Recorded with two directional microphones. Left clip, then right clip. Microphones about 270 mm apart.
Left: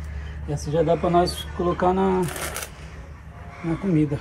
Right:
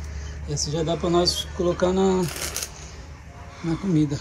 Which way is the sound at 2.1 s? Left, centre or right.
Centre.